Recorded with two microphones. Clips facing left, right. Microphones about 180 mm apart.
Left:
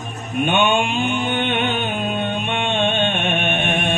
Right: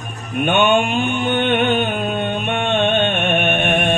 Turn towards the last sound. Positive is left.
turn(degrees=-55)  # may be behind; listen again after turning